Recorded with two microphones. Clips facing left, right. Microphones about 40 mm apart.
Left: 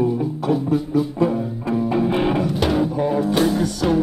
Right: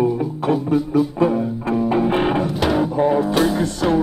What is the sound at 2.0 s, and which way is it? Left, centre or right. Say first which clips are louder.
Music: even; right.